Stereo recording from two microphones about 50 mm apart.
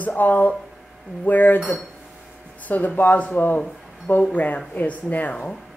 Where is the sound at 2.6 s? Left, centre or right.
Left.